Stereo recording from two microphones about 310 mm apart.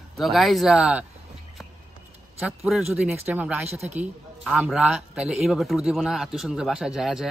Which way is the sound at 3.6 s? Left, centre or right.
Right.